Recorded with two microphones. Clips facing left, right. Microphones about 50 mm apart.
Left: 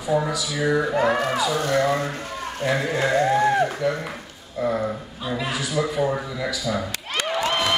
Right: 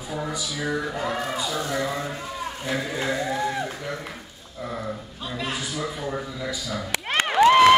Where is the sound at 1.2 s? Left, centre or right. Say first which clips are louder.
Left 5 dB; left.